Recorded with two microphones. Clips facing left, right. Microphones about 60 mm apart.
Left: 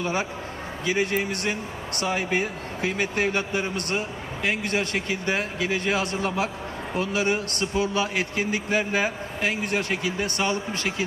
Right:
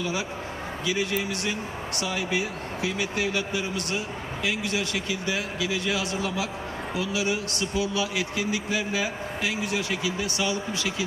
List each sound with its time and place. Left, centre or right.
0.8 s speech: left